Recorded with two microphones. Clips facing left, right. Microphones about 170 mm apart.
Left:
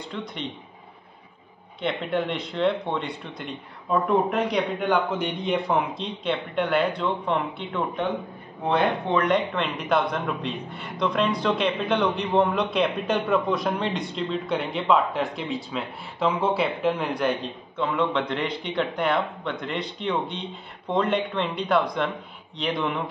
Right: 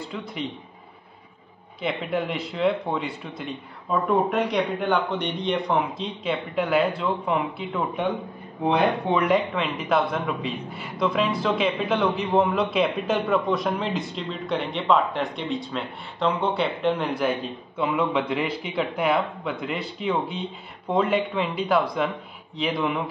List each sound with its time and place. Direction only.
0.0 s speech: 5° right (ahead or behind)
1.8 s speech: 5° right (ahead or behind)